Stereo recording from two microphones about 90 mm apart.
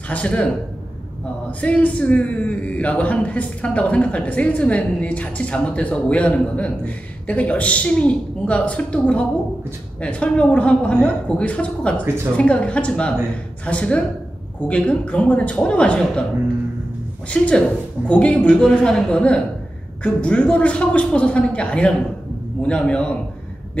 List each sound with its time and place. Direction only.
0.1 s a man's voice: 15° left (ahead or behind)
1.6 s a man's voice: 15° left (ahead or behind)
17.3 s a man's voice: 10° left (ahead or behind)